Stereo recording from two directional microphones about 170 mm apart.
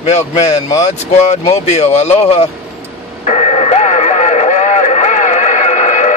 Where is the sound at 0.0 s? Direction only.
40° left (ahead or behind).